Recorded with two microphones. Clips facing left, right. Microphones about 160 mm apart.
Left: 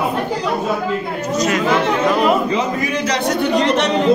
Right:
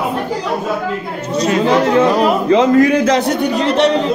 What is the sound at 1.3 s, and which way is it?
Speech, 30° right (ahead or behind).